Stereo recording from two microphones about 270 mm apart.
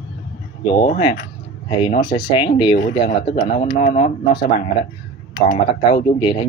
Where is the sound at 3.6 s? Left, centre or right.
Left.